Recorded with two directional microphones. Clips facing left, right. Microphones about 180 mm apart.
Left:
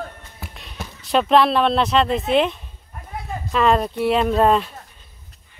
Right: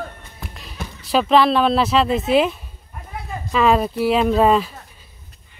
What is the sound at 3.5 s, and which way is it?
Speech, 5° right (ahead or behind).